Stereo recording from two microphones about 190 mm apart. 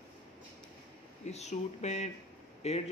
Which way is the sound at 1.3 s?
35° left (ahead or behind).